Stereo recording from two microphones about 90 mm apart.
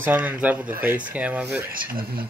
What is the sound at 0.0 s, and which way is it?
Speech, 20° right (ahead or behind).